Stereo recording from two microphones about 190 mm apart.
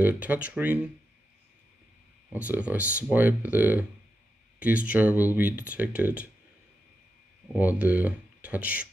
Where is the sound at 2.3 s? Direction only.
5° right (ahead or behind).